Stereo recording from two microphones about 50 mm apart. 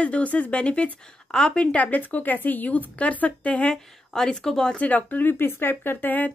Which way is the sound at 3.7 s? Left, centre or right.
Centre.